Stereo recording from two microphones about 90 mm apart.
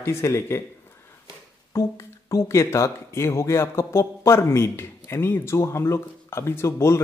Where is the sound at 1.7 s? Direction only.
30° left (ahead or behind).